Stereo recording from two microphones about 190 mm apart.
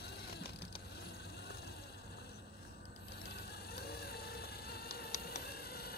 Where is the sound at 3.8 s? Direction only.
55° left (ahead or behind).